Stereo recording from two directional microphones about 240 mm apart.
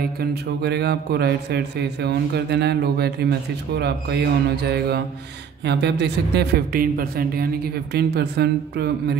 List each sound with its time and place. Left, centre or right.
0.2 s a man's voice: right